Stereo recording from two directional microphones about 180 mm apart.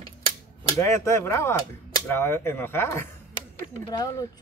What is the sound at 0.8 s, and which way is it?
Speech, 15° left (ahead or behind).